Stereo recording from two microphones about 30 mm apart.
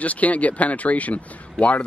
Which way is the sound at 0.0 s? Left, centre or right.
Left.